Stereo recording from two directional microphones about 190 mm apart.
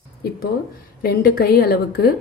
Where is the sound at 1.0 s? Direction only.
50° left (ahead or behind).